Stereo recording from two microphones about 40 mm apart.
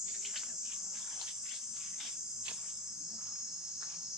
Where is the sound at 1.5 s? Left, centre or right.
Centre.